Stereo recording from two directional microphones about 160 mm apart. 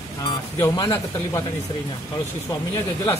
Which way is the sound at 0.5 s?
20° left (ahead or behind).